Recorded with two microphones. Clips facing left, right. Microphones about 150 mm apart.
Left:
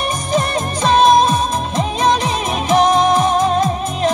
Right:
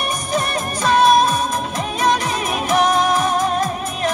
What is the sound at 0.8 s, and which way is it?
Music, 25° left (ahead or behind).